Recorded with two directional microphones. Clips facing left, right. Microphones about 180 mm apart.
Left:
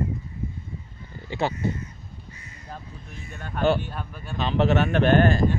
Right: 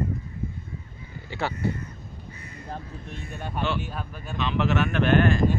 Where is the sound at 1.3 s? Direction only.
20° left (ahead or behind).